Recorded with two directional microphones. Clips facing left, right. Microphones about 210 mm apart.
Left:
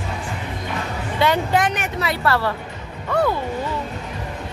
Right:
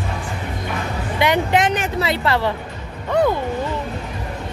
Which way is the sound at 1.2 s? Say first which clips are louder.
Right 1 dB; 20° right (ahead or behind).